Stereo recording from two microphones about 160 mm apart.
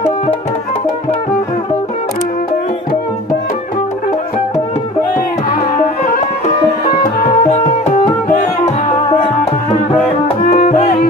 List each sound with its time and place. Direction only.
5.5 s music: 60° left (ahead or behind)
7.4 s music: 50° left (ahead or behind)
10.4 s music: 60° left (ahead or behind)